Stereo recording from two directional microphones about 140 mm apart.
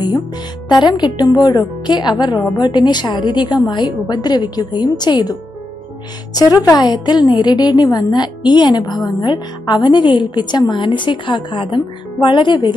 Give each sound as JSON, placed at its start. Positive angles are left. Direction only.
{"t": 0.7, "sound": "a woman's voice", "side_deg": 30}